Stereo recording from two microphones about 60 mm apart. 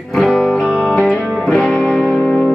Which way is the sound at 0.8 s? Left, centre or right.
Centre.